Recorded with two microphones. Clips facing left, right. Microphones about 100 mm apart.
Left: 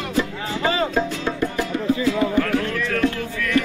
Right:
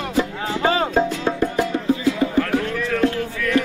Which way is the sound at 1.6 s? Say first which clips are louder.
Right 1 dB; centre (ahead or behind).